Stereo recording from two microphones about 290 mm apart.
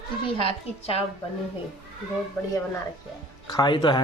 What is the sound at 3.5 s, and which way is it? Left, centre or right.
Speech, centre.